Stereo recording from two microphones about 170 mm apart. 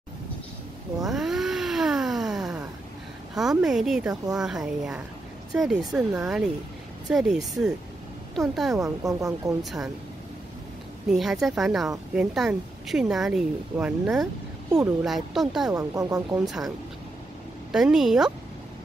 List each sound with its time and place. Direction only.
1.0 s cat: centre (ahead or behind)
3.3 s speech: 5° right (ahead or behind)
8.7 s speech: 20° right (ahead or behind)
11.1 s speech: centre (ahead or behind)
15.7 s speech: 20° right (ahead or behind)
16.3 s speech: centre (ahead or behind)
17.7 s speech: 5° right (ahead or behind)